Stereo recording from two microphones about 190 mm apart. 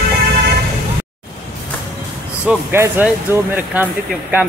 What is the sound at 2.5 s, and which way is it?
Speech, 10° right (ahead or behind).